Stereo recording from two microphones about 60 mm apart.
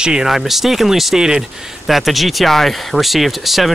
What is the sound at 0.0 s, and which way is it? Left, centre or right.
Speech, centre.